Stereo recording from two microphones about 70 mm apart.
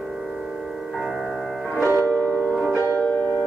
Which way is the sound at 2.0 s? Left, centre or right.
Left.